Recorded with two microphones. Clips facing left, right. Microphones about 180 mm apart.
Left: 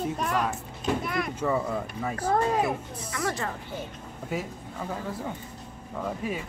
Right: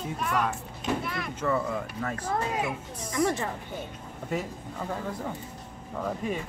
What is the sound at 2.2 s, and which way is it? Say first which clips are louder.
Speech: left 6 dB; 40° left (ahead or behind).